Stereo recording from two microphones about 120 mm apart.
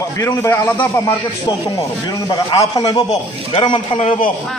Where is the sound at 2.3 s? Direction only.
30° left (ahead or behind).